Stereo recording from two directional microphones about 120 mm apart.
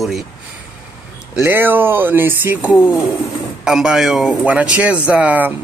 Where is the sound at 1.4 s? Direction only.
15° right (ahead or behind).